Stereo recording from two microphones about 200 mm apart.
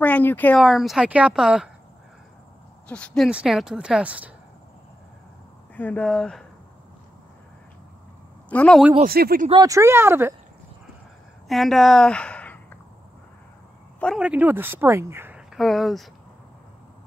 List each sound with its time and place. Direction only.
0.0 s speech: 10° left (ahead or behind)
2.9 s speech: 5° left (ahead or behind)
5.8 s speech: 10° left (ahead or behind)
8.5 s speech: 5° left (ahead or behind)
9.0 s speech: 50° right (ahead or behind)
9.5 s speech: 20° right (ahead or behind)
11.4 s speech: centre (ahead or behind)
13.9 s a woman's voice: centre (ahead or behind)